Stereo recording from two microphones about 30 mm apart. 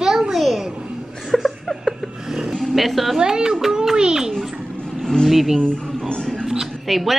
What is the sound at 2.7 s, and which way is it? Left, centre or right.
Speech, centre.